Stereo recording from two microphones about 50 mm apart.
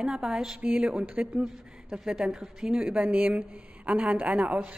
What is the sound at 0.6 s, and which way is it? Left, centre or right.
Speech, right.